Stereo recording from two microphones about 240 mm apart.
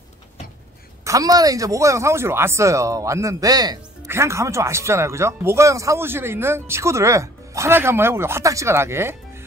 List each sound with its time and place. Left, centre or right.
1.0 s speech: centre